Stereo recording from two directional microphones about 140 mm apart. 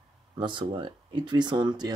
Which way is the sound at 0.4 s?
35° right (ahead or behind).